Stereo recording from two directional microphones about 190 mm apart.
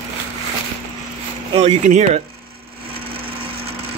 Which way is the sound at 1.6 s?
35° right (ahead or behind).